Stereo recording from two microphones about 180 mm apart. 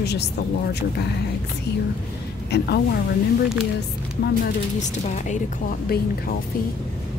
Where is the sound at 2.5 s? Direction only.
65° left (ahead or behind).